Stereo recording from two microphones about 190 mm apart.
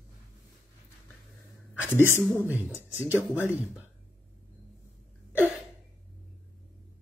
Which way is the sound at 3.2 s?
15° left (ahead or behind).